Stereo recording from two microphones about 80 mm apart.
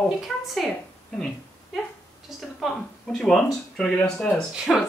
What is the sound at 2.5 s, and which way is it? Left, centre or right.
Speech, centre.